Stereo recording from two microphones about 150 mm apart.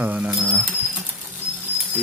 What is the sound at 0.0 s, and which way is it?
Speech, 10° right (ahead or behind).